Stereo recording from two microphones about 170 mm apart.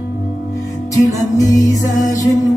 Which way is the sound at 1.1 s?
20° left (ahead or behind).